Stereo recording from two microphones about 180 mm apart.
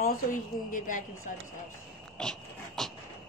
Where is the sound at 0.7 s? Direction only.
45° left (ahead or behind).